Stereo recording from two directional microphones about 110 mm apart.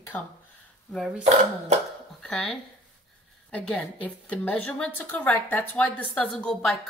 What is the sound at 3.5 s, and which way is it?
A woman's voice, 10° left (ahead or behind).